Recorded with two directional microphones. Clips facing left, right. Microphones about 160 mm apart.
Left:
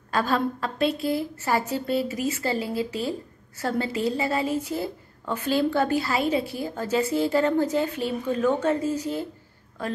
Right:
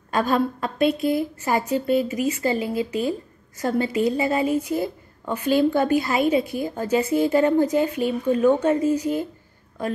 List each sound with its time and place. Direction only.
0.1 s a woman's voice: 15° right (ahead or behind)